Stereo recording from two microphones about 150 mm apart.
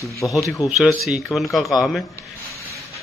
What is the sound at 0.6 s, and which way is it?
Speech, 20° left (ahead or behind).